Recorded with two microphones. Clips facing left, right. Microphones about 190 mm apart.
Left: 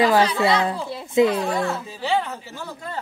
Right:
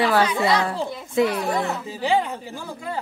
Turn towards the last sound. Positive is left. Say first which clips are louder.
# right 2 dB
turn(degrees=-15)  # may be behind; listen again after turning